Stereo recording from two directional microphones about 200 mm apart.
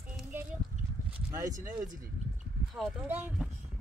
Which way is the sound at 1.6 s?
20° right (ahead or behind).